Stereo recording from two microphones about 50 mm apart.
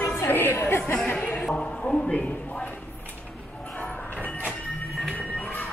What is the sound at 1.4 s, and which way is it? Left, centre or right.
Speech, centre.